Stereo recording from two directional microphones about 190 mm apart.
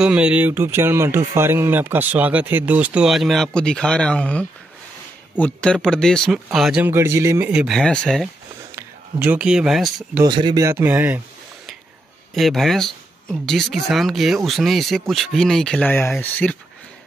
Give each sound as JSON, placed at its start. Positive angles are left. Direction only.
{"t": 0.0, "sound": "speech", "side_deg": -5}
{"t": 8.7, "sound": "speech", "side_deg": -10}
{"t": 10.2, "sound": "speech", "side_deg": -20}
{"t": 12.4, "sound": "speech", "side_deg": 0}